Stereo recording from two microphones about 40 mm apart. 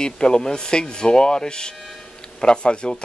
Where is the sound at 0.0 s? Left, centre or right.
Centre.